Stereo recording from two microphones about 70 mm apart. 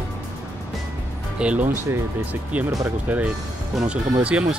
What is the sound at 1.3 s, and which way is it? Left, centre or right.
Speech, centre.